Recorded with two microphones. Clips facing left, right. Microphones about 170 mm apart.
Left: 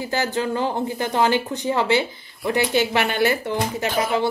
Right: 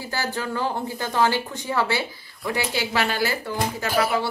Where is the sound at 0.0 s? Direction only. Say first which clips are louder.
Left 5 dB; 20° left (ahead or behind).